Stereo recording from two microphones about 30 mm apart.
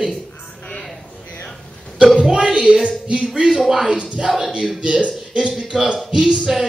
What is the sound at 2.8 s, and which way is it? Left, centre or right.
Speech, right.